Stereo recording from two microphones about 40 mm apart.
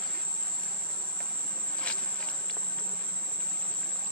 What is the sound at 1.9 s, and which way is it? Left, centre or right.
Insect, left.